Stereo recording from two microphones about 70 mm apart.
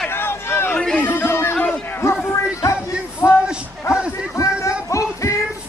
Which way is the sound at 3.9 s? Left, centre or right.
Left.